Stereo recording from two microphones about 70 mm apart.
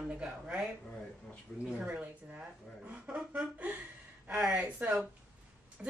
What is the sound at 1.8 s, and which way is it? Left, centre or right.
Speech, centre.